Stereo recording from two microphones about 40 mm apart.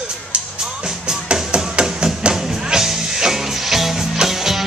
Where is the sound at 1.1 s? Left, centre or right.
Centre.